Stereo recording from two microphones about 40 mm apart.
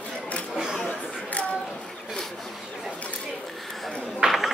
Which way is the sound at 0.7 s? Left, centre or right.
Left.